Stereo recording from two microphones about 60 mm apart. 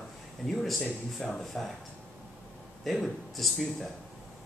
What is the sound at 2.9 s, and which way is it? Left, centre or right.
Speech, centre.